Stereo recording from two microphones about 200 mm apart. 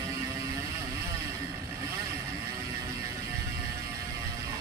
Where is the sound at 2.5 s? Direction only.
20° right (ahead or behind).